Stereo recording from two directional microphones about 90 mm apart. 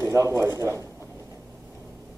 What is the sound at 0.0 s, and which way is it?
Speech, 35° right (ahead or behind).